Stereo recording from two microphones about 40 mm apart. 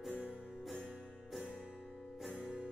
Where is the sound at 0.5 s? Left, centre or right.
Centre.